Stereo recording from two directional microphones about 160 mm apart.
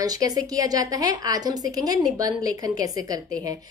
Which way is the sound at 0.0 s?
20° right (ahead or behind).